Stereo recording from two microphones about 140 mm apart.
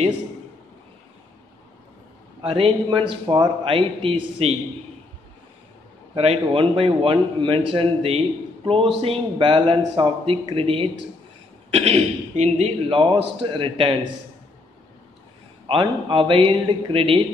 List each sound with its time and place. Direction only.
2.4 s a man's voice: 40° right (ahead or behind)
6.1 s a man's voice: 45° right (ahead or behind)
15.6 s a man's voice: 35° right (ahead or behind)